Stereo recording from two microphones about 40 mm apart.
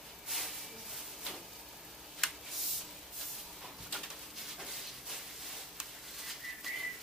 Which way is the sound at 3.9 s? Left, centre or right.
Centre.